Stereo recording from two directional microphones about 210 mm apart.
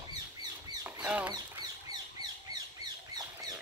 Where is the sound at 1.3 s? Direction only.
20° right (ahead or behind).